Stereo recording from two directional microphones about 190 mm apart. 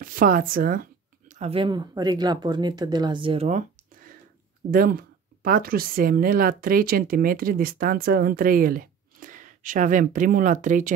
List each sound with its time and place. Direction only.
0.0 s speech: 45° right (ahead or behind)
1.3 s speech: 30° right (ahead or behind)
4.6 s speech: 50° right (ahead or behind)